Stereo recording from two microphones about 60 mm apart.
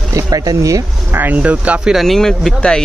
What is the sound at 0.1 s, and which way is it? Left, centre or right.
Speech, right.